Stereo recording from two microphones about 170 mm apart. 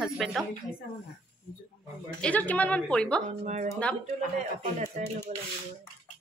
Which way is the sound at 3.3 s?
40° right (ahead or behind).